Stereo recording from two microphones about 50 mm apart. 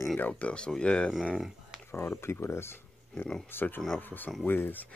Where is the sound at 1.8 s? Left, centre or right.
Left.